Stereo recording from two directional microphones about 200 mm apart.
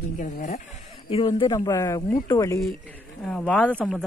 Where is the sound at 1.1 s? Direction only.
25° left (ahead or behind).